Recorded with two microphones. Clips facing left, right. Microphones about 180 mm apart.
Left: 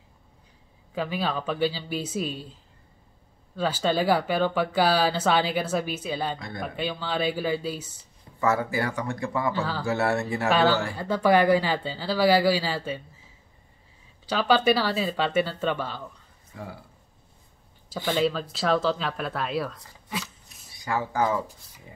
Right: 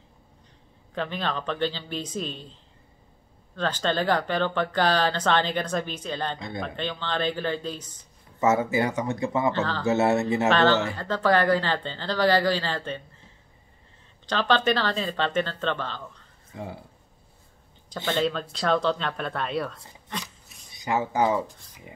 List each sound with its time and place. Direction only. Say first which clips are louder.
0.9 s speech: left 1 dB; 5° left (ahead or behind)
8.4 s speech: right 3 dB; 20° right (ahead or behind)
9.5 s speech: right 2 dB; 10° left (ahead or behind)
9.8 s speech: right 4 dB; 20° right (ahead or behind)
10.5 s speech: left 1 dB; 10° left (ahead or behind)
16.5 s speech: right 3 dB; 20° right (ahead or behind)
17.8 s speech: left 1 dB; 5° left (ahead or behind)
20.1 s a sound: left 2 dB; 5° left (ahead or behind)
20.7 s speech: right 2 dB; 20° right (ahead or behind)